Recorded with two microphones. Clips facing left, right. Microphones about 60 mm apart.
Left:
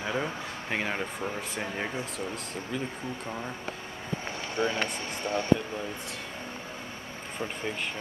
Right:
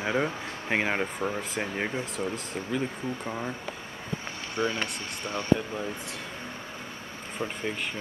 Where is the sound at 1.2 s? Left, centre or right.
Centre.